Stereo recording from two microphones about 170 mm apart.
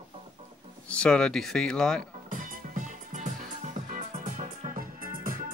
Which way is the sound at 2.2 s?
50° right (ahead or behind).